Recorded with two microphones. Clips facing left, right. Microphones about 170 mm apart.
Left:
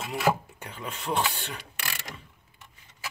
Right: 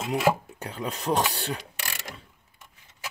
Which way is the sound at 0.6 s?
35° right (ahead or behind).